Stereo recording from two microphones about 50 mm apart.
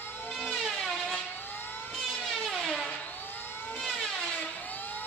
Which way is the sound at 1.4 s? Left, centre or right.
Left.